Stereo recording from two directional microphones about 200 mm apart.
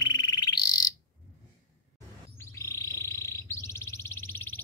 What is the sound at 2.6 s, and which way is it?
Frog, 15° left (ahead or behind).